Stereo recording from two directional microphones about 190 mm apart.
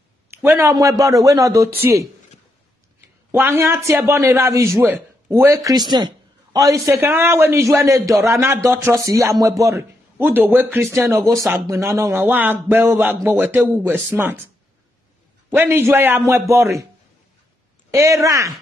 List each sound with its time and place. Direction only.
0.4 s a man's voice: 15° right (ahead or behind)
3.3 s a man's voice: 15° right (ahead or behind)
15.5 s a man's voice: 10° right (ahead or behind)
17.9 s a man's voice: 15° right (ahead or behind)